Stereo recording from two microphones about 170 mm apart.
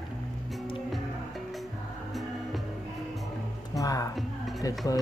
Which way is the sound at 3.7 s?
20° left (ahead or behind).